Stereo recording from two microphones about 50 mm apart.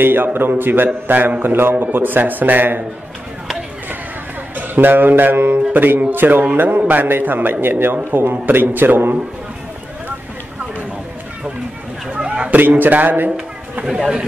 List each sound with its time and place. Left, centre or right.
0.0 s a man's voice: right
4.6 s a man's voice: right
12.2 s a sound: right
12.5 s speech: right
13.8 s speech: centre